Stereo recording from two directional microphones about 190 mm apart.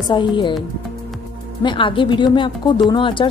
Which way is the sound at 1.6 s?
25° left (ahead or behind).